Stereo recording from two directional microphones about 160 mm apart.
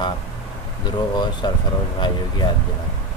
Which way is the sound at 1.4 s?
25° left (ahead or behind).